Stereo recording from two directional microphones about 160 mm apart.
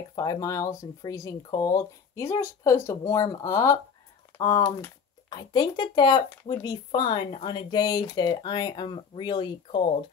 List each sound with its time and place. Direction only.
0.1 s speech: 25° left (ahead or behind)